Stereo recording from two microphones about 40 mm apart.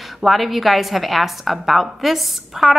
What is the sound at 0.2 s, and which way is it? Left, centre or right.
A woman's voice, centre.